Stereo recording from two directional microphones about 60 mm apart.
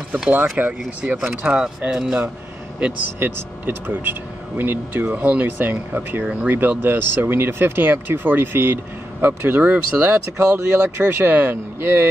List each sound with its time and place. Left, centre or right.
0.3 s speech: right
1.0 s speech: centre
3.2 s speech: right
10.5 s speech: right